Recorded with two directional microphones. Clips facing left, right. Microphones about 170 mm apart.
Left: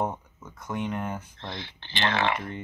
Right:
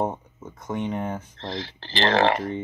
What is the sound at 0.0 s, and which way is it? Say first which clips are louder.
Speech: right 3 dB; 25° right (ahead or behind).